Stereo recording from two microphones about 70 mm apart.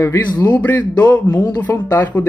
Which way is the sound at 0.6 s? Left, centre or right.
Left.